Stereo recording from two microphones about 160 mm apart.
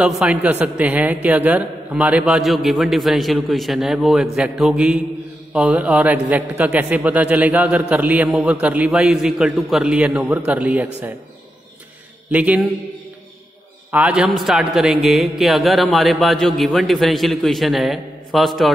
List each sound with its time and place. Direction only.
0.0 s a man's voice: 10° right (ahead or behind)
12.3 s a man's voice: 10° right (ahead or behind)
13.9 s a man's voice: 5° right (ahead or behind)